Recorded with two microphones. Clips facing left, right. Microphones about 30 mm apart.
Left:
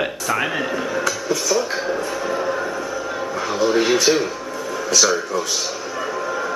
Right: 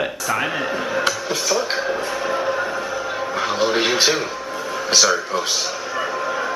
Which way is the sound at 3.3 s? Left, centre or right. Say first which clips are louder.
Left 1 dB; right.